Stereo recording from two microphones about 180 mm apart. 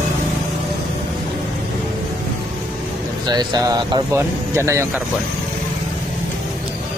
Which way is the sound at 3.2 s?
20° right (ahead or behind).